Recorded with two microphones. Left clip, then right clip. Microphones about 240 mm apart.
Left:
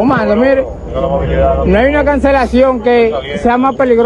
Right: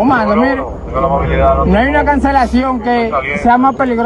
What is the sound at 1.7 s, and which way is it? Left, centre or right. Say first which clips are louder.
A man's voice: left 1 dB; right.